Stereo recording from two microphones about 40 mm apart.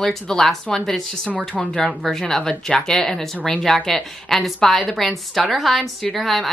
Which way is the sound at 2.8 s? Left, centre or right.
Centre.